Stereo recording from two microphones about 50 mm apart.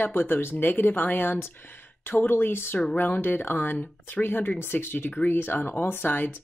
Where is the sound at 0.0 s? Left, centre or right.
Left.